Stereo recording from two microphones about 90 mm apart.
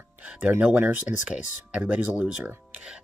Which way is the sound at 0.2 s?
15° right (ahead or behind).